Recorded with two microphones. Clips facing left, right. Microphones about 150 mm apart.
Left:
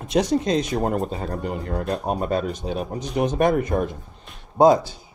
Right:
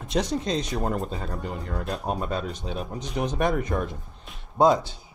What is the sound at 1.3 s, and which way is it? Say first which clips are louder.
Speech: left 5 dB; centre (ahead or behind).